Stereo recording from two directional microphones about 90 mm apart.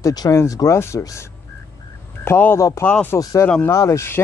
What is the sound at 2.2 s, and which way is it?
Speech, 25° left (ahead or behind).